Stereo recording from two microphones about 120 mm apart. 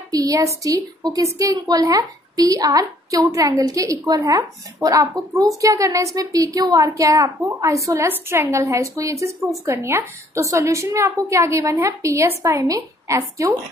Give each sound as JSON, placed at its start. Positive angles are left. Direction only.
{"t": 0.1, "sound": "a child's voice", "side_deg": -30}